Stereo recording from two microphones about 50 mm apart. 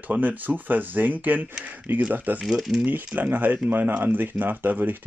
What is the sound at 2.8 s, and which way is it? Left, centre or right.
Speech, right.